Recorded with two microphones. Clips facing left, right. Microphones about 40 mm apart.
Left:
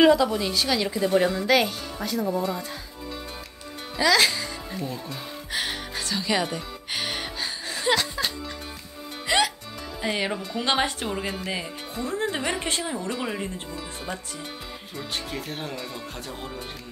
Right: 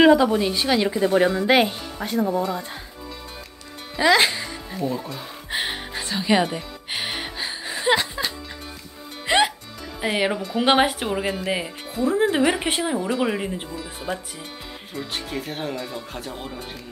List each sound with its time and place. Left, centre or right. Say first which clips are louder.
0.0 s a woman's voice: right 3 dB; right
4.0 s a woman's voice: right 3 dB; right
4.7 s speech: right 8 dB; centre
5.5 s music: right 3 dB; right
10.1 s a woman's voice: right 8 dB; right
13.7 s speech: right 4 dB; centre